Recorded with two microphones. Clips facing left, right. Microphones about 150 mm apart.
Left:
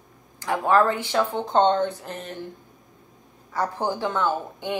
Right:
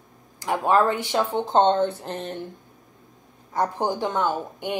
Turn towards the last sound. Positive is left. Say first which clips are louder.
# even
turn(degrees=-15)  # may be behind; listen again after turning